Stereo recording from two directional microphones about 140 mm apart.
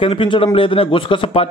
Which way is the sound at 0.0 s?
40° left (ahead or behind).